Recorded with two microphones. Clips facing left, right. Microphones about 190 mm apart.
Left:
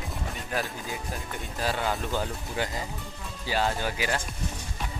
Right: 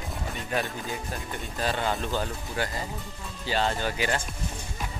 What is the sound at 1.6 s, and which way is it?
Speech, centre (ahead or behind).